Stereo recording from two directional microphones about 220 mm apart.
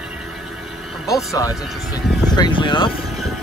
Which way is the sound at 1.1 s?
15° left (ahead or behind).